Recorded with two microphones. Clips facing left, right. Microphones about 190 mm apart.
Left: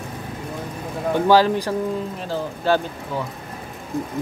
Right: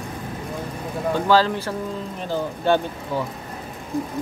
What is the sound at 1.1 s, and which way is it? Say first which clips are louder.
Speech: left 3 dB; 15° left (ahead or behind).